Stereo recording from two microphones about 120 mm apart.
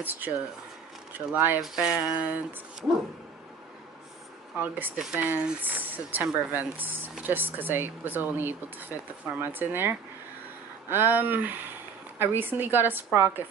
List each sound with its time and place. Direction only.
0.0 s speech: 15° right (ahead or behind)
1.6 s speech: 5° right (ahead or behind)
4.6 s speech: 15° right (ahead or behind)